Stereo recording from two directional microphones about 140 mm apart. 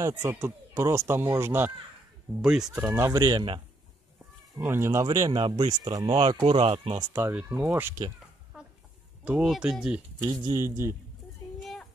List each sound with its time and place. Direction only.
0.0 s speech: 20° right (ahead or behind)
2.4 s speech: 5° right (ahead or behind)
2.7 s speech: 15° right (ahead or behind); by 3.6 s 35° right (ahead or behind)
4.6 s speech: 15° right (ahead or behind)
5.3 s speech: 35° right (ahead or behind)
7.0 s speech: 25° right (ahead or behind)
7.3 s speech: 10° right (ahead or behind)
8.5 s chicken: 5° right (ahead or behind)
9.2 s speech: 5° right (ahead or behind)
10.2 s speech: 25° right (ahead or behind)
11.6 s child singing: centre (ahead or behind)